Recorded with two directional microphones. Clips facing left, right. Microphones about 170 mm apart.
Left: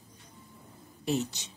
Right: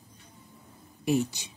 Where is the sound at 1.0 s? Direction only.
10° right (ahead or behind).